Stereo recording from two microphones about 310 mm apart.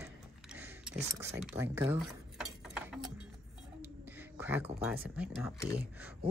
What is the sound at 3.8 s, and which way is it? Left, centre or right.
Whispering, centre.